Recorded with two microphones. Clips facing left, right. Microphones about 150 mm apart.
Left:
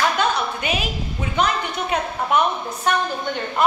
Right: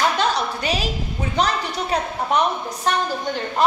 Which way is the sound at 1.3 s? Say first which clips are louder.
Even; 35° right (ahead or behind).